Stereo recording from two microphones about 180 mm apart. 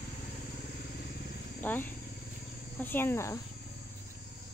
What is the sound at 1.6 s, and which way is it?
Insect, 10° left (ahead or behind).